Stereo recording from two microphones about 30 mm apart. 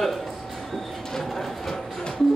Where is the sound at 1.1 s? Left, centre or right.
Centre.